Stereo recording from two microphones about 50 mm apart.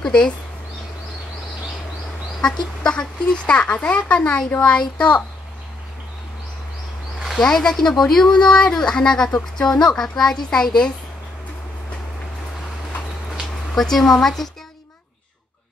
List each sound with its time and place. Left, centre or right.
0.0 s speech: centre
2.4 s speech: centre
7.3 s speech: centre
13.7 s speech: centre